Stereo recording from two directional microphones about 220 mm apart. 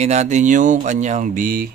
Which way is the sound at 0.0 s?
30° right (ahead or behind).